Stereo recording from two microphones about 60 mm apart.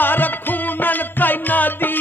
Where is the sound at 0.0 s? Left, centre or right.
Left.